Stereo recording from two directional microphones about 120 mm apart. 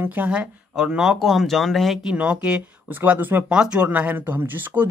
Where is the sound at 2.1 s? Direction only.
10° right (ahead or behind).